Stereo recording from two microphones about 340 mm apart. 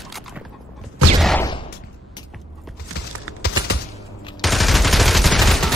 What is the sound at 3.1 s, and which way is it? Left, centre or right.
Typing, right.